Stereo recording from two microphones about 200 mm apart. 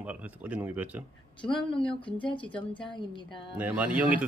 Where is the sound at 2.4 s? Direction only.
5° left (ahead or behind).